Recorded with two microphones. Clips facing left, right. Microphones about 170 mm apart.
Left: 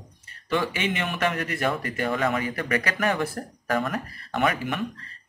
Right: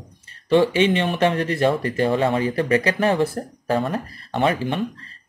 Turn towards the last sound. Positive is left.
turn(degrees=-30)  # may be behind; listen again after turning